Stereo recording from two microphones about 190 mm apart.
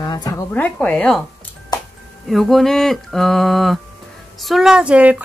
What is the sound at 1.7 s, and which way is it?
Music, 20° left (ahead or behind).